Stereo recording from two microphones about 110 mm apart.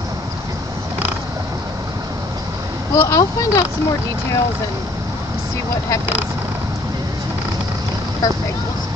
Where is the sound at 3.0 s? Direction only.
30° left (ahead or behind).